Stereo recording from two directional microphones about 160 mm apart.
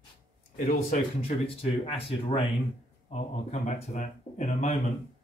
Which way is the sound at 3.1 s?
45° left (ahead or behind).